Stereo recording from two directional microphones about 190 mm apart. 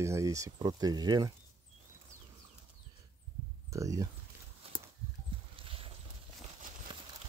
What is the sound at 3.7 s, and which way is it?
Speech, 15° right (ahead or behind).